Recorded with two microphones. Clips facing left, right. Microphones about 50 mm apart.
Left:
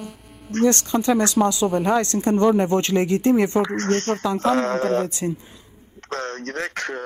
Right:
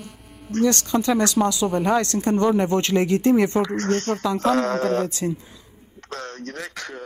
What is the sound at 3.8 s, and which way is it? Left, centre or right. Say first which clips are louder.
Speech: left 1 dB; left.